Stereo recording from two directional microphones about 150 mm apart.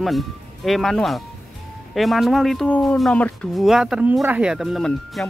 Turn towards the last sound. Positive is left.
turn(degrees=0)  # may be behind; listen again after turning